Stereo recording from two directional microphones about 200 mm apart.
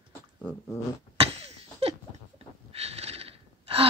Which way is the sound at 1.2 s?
30° right (ahead or behind).